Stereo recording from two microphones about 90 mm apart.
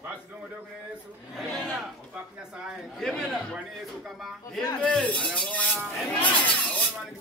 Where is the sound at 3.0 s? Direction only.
5° left (ahead or behind).